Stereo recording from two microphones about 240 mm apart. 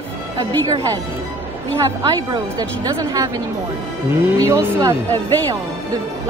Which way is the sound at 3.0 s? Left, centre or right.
Centre.